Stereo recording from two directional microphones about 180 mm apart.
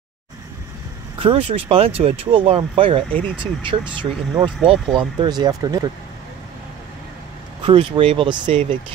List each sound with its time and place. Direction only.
1.2 s speech: 30° right (ahead or behind)
7.6 s speech: 25° right (ahead or behind)